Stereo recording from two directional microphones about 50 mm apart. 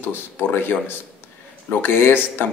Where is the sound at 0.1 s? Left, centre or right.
Left.